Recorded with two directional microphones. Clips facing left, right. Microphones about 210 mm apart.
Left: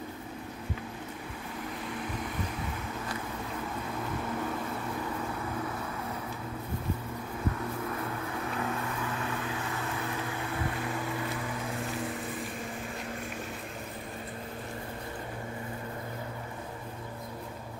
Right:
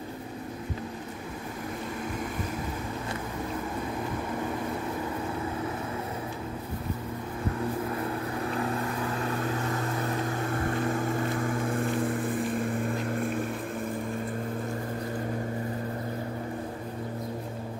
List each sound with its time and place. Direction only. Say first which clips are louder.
9.2 s vehicle: right 5 dB; 40° right (ahead or behind)